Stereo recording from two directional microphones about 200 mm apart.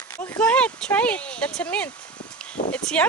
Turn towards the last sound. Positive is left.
turn(degrees=5)  # may be behind; listen again after turning